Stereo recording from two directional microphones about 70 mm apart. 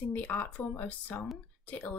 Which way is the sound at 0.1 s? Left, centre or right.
Left.